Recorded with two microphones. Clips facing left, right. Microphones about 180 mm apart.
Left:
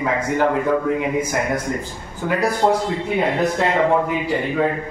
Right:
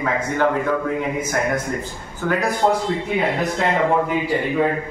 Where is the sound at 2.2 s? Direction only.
15° left (ahead or behind).